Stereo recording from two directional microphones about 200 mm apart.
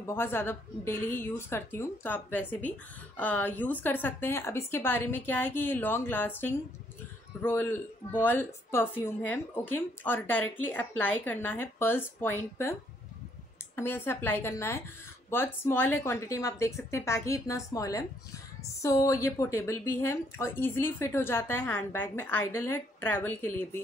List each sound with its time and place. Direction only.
0.0 s a woman's voice: 10° left (ahead or behind)
13.7 s a woman's voice: 10° left (ahead or behind)